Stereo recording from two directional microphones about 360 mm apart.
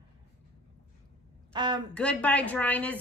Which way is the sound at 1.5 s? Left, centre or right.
Centre.